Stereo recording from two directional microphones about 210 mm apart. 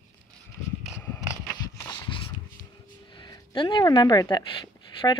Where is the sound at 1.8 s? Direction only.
15° left (ahead or behind).